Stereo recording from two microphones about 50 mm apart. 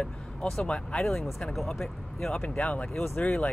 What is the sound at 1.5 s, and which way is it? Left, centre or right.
Speech, centre.